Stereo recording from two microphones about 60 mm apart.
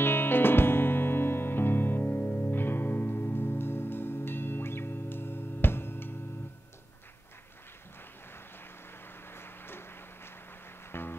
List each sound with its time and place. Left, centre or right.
0.0 s music: left
9.3 s a sound: left
10.9 s music: left